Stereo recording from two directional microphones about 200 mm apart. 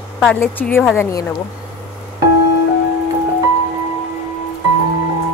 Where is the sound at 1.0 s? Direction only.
15° left (ahead or behind).